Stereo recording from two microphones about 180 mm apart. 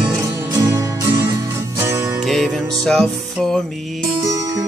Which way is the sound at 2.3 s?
5° left (ahead or behind).